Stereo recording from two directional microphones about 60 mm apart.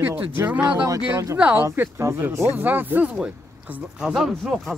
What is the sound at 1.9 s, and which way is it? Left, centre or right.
Speech, right.